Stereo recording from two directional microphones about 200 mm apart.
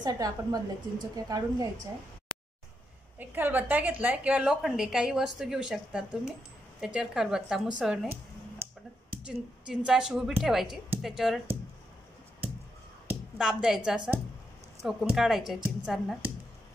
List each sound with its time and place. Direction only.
0.0 s a woman's voice: 20° right (ahead or behind)
3.2 s a woman's voice: 10° right (ahead or behind)
8.6 s a sound: 10° right (ahead or behind)
9.1 s a woman's voice: 5° right (ahead or behind)
13.0 s a woman's voice: 5° right (ahead or behind)